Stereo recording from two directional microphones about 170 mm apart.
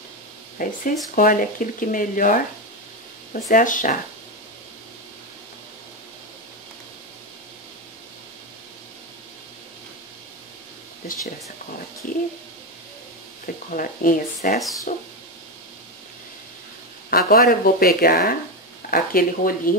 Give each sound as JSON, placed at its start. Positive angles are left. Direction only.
{"t": 0.6, "sound": "speech", "side_deg": 50}
{"t": 12.0, "sound": "speech", "side_deg": 55}
{"t": 13.7, "sound": "speech", "side_deg": 50}
{"t": 17.1, "sound": "speech", "side_deg": 60}